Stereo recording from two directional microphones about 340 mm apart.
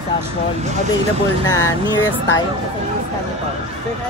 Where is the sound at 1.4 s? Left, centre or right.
Centre.